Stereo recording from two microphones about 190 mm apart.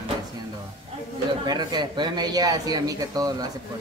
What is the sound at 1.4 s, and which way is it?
Speech, 20° right (ahead or behind).